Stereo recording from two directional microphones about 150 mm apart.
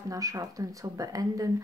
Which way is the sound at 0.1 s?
25° right (ahead or behind).